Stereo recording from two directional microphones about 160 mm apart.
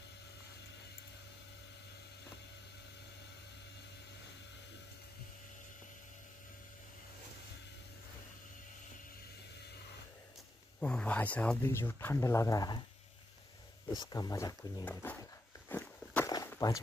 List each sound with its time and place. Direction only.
10.8 s speech: 5° left (ahead or behind); by 12.8 s 25° left (ahead or behind)
13.8 s speech: 25° left (ahead or behind)
14.9 s speech: 10° left (ahead or behind)
15.7 s walk: 10° left (ahead or behind)
16.3 s walk: 20° left (ahead or behind)